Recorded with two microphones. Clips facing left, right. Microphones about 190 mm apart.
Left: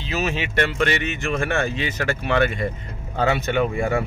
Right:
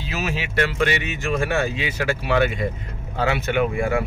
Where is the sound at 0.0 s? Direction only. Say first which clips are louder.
Left 2 dB; 5° right (ahead or behind).